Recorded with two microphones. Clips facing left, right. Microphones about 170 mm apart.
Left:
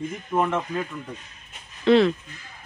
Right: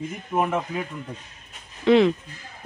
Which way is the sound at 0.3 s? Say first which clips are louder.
Even; 10° right (ahead or behind).